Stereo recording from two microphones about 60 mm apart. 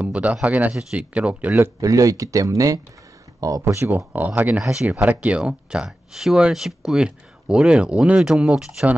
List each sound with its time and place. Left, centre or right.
0.0 s speech: right
1.8 s speech: right
3.6 s speech: right
3.9 s speech: right
4.6 s speech: centre
5.0 s speech: right